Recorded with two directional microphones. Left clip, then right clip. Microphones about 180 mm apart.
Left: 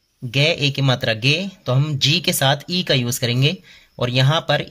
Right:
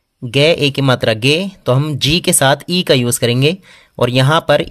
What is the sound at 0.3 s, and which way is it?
Speech, 40° right (ahead or behind).